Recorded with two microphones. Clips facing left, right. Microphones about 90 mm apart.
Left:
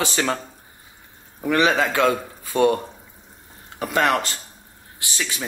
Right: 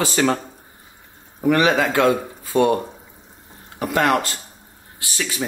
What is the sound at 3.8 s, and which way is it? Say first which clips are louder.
Speech: right 2 dB; 20° right (ahead or behind).